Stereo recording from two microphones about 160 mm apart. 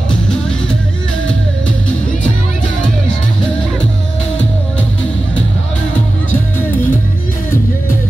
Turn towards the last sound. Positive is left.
turn(degrees=10)  # may be behind; listen again after turning